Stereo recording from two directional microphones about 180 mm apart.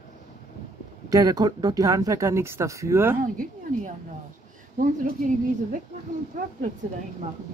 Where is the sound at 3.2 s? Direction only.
45° right (ahead or behind).